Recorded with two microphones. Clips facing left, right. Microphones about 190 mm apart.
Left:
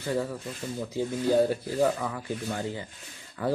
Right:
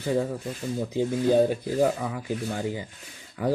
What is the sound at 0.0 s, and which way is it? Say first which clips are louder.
Speech: right 4 dB; 15° right (ahead or behind).